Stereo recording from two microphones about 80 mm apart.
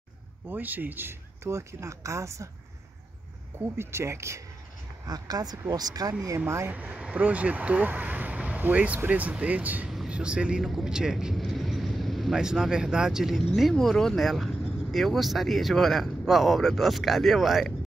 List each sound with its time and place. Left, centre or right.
0.5 s speech: right
3.7 s speech: right
5.0 s speech: right
6.4 s speech: right
6.7 s speech: centre
9.8 s speech: centre